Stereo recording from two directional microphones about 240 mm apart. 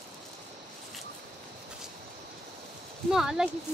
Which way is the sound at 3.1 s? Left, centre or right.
Centre.